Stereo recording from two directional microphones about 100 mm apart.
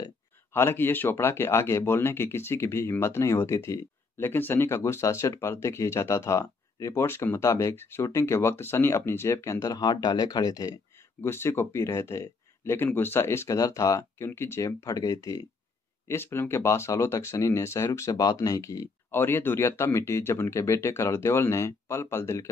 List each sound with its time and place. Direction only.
0.5 s speech: 25° left (ahead or behind)
4.2 s speech: 20° left (ahead or behind); by 10.7 s 40° left (ahead or behind)
11.1 s speech: 25° left (ahead or behind)
16.1 s speech: 25° left (ahead or behind)